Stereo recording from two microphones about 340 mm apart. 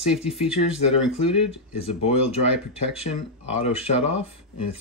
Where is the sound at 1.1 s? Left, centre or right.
Centre.